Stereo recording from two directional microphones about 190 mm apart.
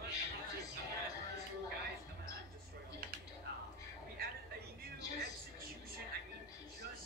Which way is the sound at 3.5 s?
65° right (ahead or behind).